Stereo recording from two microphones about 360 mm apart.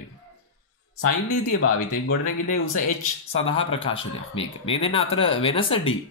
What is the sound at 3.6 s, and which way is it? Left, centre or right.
Speech, centre.